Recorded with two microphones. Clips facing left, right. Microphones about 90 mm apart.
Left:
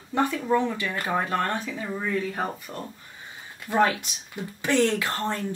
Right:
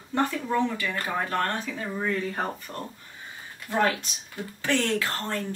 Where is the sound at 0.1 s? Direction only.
15° left (ahead or behind).